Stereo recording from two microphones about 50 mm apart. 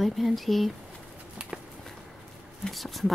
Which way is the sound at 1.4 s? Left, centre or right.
Centre.